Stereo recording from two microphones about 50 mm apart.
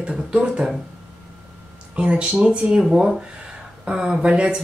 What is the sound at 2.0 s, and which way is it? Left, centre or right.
Speech, centre.